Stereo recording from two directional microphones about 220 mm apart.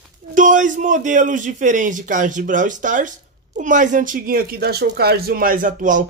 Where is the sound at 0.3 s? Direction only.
35° right (ahead or behind).